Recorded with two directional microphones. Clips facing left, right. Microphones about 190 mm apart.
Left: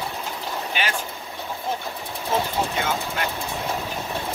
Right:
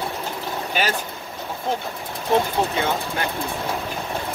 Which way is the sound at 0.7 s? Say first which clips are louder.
Right 5 dB; 40° right (ahead or behind).